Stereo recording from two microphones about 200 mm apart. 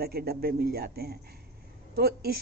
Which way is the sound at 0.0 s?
50° right (ahead or behind).